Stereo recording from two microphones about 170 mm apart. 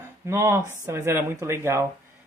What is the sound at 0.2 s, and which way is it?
Speech, 15° right (ahead or behind).